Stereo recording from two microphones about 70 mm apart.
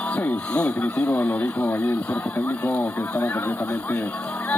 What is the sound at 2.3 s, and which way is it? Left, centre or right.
Speech, left.